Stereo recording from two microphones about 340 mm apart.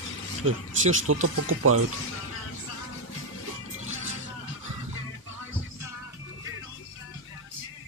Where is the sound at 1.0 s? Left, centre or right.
Right.